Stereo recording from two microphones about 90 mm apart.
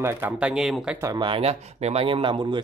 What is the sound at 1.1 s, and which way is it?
Speech, 60° right (ahead or behind).